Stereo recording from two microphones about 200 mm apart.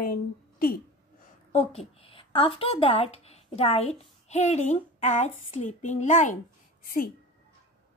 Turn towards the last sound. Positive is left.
turn(degrees=45)  # may be behind; listen again after turning